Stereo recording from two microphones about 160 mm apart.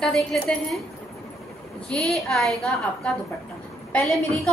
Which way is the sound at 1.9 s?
5° left (ahead or behind).